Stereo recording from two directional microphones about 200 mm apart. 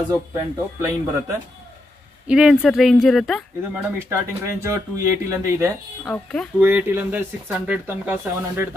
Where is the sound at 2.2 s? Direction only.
5° right (ahead or behind).